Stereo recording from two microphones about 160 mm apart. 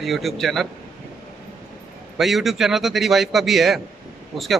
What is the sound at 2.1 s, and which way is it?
Speech, centre (ahead or behind).